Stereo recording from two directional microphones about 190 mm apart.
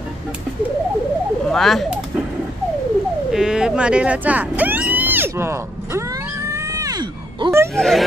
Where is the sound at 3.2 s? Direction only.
5° right (ahead or behind); by 7.5 s 25° right (ahead or behind).